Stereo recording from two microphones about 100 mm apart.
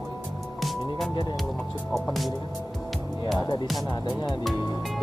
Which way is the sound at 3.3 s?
40° left (ahead or behind).